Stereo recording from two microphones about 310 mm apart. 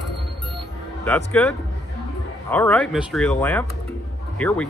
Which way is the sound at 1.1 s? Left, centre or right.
Centre.